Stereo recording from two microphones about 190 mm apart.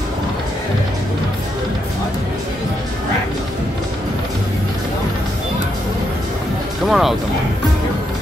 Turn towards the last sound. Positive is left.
turn(degrees=0)  # may be behind; listen again after turning